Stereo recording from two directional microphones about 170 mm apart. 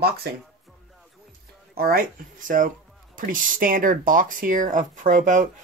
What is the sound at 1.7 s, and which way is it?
Speech, 60° right (ahead or behind).